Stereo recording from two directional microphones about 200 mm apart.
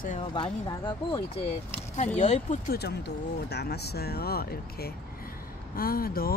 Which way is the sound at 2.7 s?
55° left (ahead or behind).